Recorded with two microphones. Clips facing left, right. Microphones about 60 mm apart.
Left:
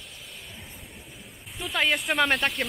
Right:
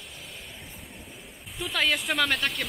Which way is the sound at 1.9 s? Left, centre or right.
Centre.